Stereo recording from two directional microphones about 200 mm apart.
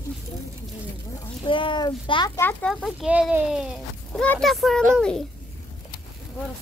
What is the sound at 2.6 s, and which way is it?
Speech, centre (ahead or behind).